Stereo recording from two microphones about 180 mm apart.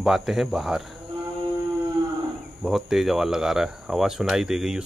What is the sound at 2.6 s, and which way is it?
Speech, centre (ahead or behind).